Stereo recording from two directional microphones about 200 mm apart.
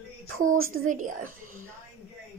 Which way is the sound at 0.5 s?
90° right.